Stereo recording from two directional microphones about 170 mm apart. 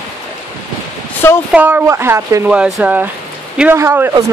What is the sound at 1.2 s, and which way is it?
Speech, 15° left (ahead or behind).